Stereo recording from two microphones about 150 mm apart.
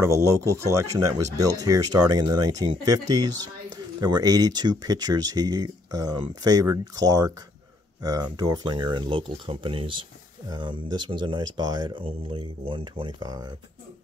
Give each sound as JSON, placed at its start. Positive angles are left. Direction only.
{"t": 0.0, "sound": "speech", "side_deg": -20}